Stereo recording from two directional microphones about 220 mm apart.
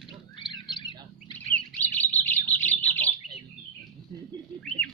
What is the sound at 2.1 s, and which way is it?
Bird, 5° left (ahead or behind).